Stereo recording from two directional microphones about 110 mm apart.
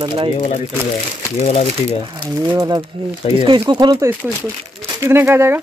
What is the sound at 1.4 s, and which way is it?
Speech, 65° left (ahead or behind).